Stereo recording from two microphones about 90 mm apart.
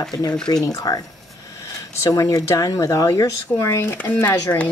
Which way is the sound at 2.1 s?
40° left (ahead or behind).